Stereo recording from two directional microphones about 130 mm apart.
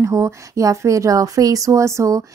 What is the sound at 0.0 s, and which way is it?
Speech, 25° right (ahead or behind).